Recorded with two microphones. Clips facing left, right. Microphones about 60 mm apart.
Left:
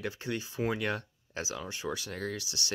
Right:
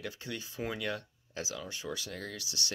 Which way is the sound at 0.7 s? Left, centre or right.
Left.